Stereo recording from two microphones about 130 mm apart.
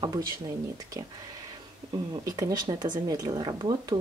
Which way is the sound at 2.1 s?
25° right (ahead or behind).